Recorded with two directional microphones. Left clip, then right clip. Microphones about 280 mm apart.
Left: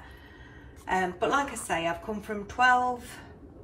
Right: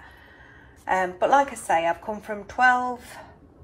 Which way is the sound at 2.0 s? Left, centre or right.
Right.